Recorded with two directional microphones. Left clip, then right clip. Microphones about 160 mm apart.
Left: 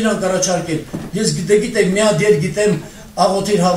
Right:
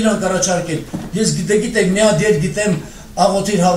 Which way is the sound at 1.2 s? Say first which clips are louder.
Left 2 dB; 25° left (ahead or behind).